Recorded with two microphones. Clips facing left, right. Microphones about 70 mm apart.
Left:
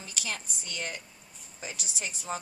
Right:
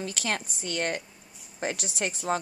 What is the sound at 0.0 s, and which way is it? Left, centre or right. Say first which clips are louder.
Speech: right 7 dB; right.